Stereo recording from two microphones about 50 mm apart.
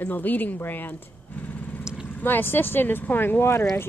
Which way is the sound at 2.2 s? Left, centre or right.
Left.